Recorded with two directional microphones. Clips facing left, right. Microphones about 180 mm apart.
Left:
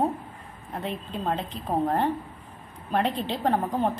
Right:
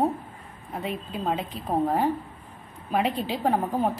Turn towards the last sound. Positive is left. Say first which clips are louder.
# even
turn(degrees=-5)  # may be behind; listen again after turning